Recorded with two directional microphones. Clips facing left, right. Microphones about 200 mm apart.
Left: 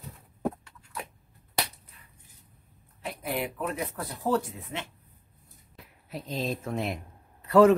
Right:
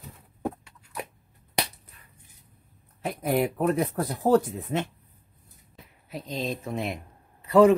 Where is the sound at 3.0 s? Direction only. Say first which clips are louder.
Right 7 dB; 45° right (ahead or behind).